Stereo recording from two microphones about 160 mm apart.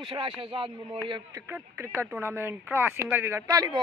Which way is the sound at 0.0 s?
30° right (ahead or behind).